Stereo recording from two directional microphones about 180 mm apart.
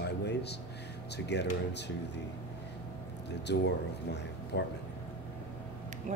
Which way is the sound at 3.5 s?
70° left (ahead or behind).